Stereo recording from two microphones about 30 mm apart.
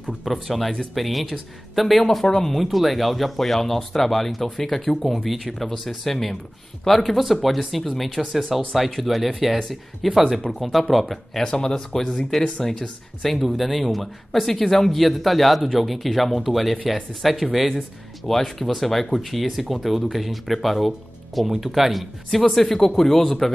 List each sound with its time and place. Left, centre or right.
0.2 s speech: centre
2.2 s speech: centre
2.5 s speech: centre
5.4 s speech: centre
11.4 s speech: left
13.2 s speech: centre
17.7 s speech: centre